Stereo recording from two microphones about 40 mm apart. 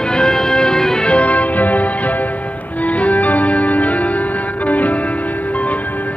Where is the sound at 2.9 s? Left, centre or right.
Left.